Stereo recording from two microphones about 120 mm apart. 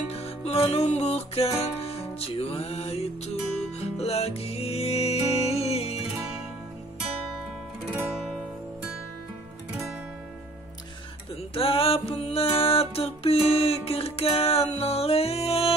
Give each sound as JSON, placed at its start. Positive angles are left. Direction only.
{"t": 0.1, "sound": "music", "side_deg": 60}
{"t": 11.5, "sound": "music", "side_deg": 50}